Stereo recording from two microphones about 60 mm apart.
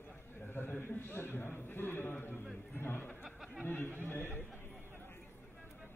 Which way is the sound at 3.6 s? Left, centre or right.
Left.